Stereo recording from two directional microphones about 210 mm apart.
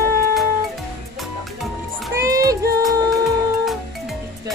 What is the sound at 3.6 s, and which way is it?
Music, centre (ahead or behind).